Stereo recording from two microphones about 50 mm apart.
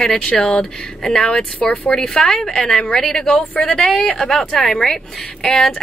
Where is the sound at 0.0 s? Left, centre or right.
Centre.